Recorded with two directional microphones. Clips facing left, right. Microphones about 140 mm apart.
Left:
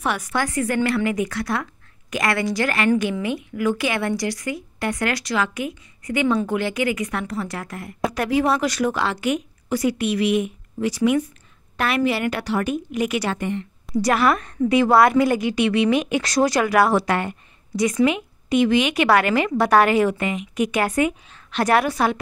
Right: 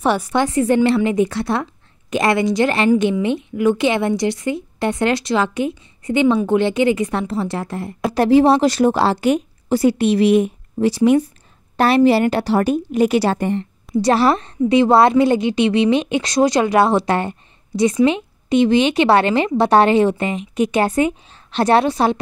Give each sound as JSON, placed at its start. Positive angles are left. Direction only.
{"t": 0.0, "sound": "a woman's voice", "side_deg": -30}